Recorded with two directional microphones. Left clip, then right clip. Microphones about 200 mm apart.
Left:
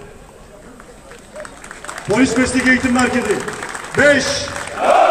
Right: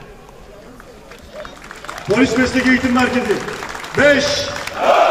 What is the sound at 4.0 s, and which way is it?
Speech, 25° left (ahead or behind).